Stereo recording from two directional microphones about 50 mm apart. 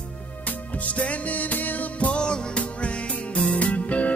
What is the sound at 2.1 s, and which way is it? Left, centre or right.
Music, centre.